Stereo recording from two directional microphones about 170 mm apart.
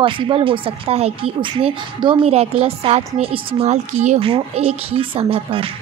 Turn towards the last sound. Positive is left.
turn(degrees=-35)  # may be behind; listen again after turning